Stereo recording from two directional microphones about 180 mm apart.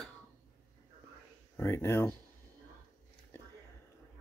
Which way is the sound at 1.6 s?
15° left (ahead or behind).